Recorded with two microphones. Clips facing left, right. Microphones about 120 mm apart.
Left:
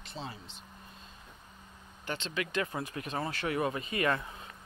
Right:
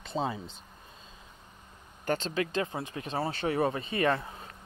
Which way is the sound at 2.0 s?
45° right (ahead or behind).